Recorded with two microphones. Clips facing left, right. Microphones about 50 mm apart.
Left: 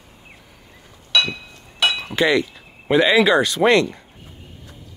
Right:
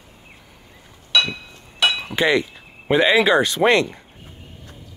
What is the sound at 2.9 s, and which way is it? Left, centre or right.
Speech, centre.